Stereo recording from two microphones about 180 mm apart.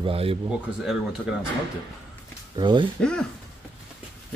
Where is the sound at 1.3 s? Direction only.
5° right (ahead or behind).